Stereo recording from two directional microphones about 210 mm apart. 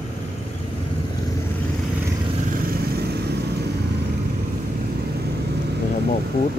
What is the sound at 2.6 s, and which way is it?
Vehicle, 50° right (ahead or behind).